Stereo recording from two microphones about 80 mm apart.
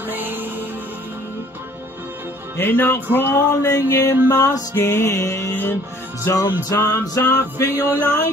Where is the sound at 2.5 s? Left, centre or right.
Left.